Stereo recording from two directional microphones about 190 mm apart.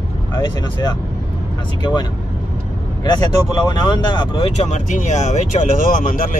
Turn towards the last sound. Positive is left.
turn(degrees=45)  # may be behind; listen again after turning